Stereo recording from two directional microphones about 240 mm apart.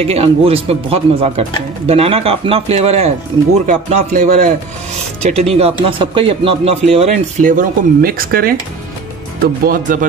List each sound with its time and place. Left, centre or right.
0.0 s speech: right